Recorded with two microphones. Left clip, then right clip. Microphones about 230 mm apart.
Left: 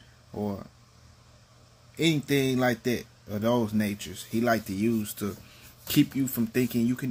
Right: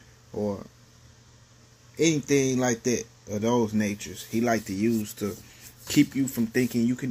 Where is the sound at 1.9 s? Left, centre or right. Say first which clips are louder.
Right 3 dB; centre.